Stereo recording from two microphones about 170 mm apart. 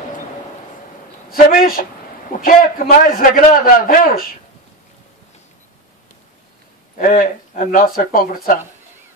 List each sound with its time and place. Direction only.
1.3 s a man's voice: 55° left (ahead or behind)
7.0 s speech: 50° left (ahead or behind)